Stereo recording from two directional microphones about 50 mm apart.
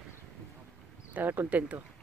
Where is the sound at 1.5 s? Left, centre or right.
Right.